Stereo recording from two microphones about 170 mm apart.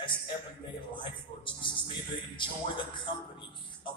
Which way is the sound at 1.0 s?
30° left (ahead or behind).